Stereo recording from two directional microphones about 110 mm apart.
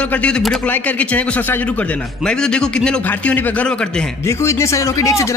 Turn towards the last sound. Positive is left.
turn(degrees=25)  # may be behind; listen again after turning